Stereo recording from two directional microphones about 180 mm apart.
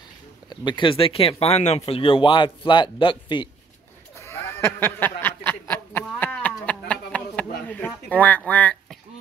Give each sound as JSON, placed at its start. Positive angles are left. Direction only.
{"t": 0.5, "sound": "speech", "side_deg": 25}
{"t": 4.2, "sound": "a sound", "side_deg": 15}
{"t": 8.5, "sound": "speech", "side_deg": 10}